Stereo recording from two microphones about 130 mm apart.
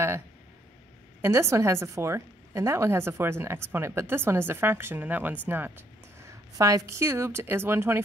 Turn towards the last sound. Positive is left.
turn(degrees=-20)  # may be behind; listen again after turning